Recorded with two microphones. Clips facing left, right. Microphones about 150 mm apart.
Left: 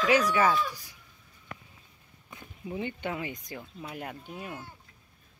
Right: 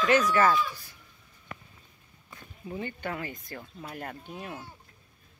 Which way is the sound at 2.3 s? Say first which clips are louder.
Left 1 dB; 15° left (ahead or behind).